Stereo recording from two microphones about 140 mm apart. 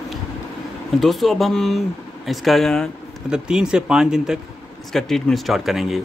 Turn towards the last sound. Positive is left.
turn(degrees=0)  # may be behind; listen again after turning